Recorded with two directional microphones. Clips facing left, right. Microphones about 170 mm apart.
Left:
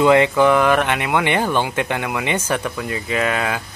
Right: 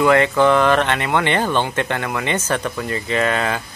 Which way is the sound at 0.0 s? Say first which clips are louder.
Left 1 dB; 15° left (ahead or behind).